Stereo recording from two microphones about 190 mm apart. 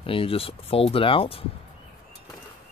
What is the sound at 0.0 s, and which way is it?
Speech, 30° left (ahead or behind).